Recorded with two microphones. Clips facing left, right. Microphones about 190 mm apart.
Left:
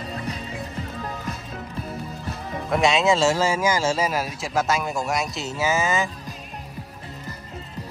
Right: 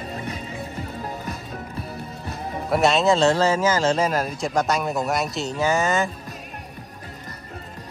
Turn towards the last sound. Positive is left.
turn(degrees=0)  # may be behind; listen again after turning